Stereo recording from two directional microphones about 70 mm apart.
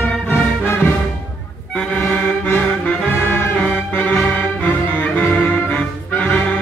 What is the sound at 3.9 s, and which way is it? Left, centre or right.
Music, left.